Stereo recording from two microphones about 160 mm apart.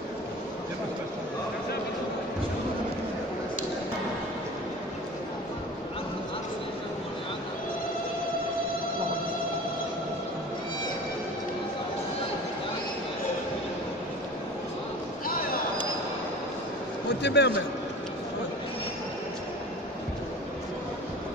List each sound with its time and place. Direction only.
17.2 s a man's voice: 90° left